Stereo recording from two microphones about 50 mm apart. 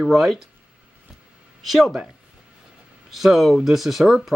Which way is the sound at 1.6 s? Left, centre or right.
Centre.